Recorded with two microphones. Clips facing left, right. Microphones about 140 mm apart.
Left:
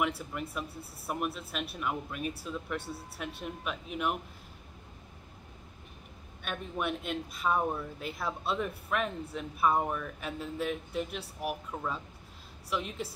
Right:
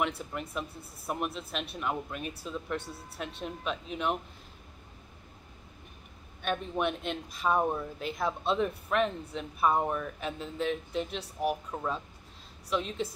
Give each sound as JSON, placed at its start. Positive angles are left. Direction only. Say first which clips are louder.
{"t": 0.0, "sound": "speech", "louder": "even", "side_deg": 5}
{"t": 6.8, "sound": "speech", "louder": "right 2 dB", "side_deg": 5}